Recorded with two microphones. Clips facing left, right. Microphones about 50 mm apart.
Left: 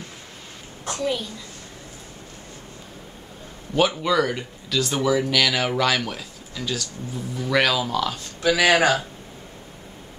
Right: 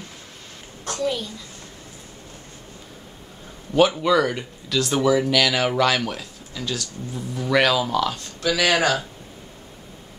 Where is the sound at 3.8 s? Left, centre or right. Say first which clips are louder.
Right 3 dB; centre.